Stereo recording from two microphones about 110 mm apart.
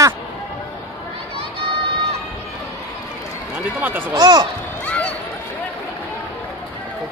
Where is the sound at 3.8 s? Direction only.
15° right (ahead or behind).